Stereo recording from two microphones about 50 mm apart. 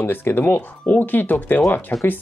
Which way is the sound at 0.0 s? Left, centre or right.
Left.